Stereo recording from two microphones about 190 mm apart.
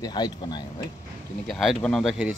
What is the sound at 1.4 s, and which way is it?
Speech, 5° left (ahead or behind).